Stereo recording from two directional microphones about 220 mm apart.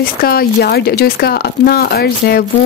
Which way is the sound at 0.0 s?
40° left (ahead or behind).